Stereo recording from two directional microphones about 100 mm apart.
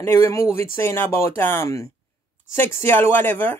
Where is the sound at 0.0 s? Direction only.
30° left (ahead or behind).